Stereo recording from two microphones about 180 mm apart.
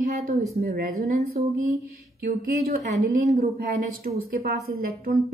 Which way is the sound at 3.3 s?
55° right (ahead or behind).